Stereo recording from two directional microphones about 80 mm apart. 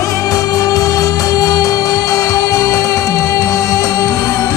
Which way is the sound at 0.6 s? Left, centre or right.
Left.